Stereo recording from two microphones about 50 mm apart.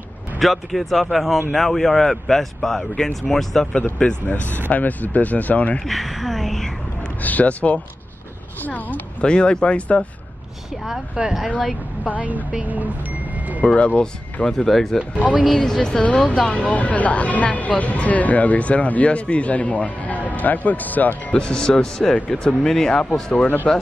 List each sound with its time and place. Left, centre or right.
0.4 s a man's voice: centre
4.0 s speech: left
5.9 s a sound: centre
7.2 s speech: left
9.2 s speech: centre
11.2 s speech: right
13.7 s speech: left
14.4 s a man's voice: centre
16.0 s speech: left
21.4 s a man's voice: centre